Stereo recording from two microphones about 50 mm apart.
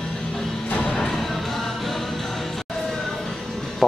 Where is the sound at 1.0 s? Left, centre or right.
Centre.